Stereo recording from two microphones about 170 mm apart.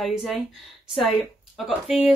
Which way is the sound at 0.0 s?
Centre (ahead or behind).